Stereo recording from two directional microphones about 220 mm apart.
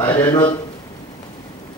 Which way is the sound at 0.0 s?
10° left (ahead or behind).